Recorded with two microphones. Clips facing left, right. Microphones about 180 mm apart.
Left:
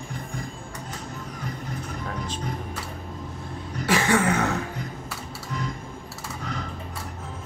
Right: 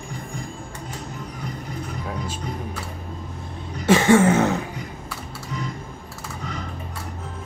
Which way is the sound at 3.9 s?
25° right (ahead or behind).